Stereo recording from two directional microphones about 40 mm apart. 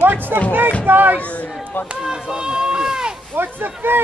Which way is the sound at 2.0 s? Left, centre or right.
Centre.